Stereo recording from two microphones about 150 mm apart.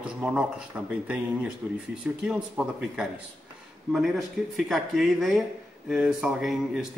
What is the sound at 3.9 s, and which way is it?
Speech, centre (ahead or behind).